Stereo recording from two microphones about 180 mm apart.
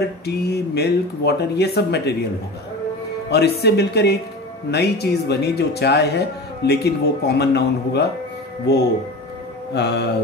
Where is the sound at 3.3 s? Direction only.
65° left (ahead or behind).